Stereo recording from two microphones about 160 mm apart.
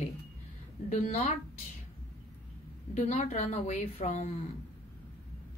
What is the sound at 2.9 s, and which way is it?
A woman's voice, 45° left (ahead or behind).